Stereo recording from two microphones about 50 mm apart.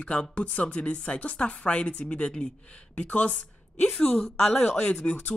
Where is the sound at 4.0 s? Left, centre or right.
Left.